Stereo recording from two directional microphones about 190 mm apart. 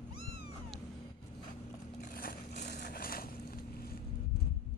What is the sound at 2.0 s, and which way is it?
Vehicle, 45° left (ahead or behind).